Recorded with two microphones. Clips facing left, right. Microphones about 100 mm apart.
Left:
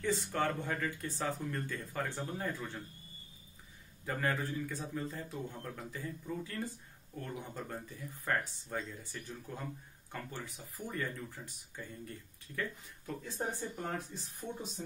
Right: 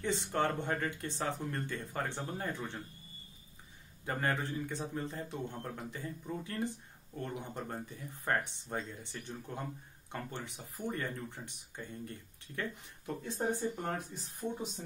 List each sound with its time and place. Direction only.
0.3 s a man's voice: 25° right (ahead or behind)
4.0 s a man's voice: 30° right (ahead or behind)